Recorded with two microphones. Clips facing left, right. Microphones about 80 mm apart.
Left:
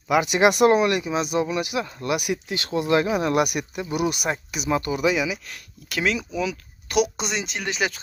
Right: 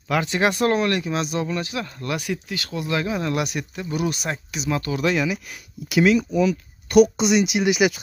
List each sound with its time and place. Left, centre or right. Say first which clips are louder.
0.1 s speech: left 3 dB; centre
3.5 s speech: left 1 dB; centre
4.9 s speech: even; centre
5.5 s speech: right 8 dB; centre